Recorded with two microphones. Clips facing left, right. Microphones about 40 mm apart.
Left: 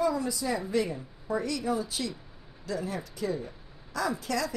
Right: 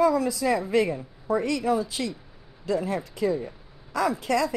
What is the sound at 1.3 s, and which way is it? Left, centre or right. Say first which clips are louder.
Speech: right 5 dB; right.